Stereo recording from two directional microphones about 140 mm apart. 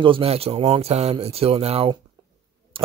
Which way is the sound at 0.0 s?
40° right (ahead or behind).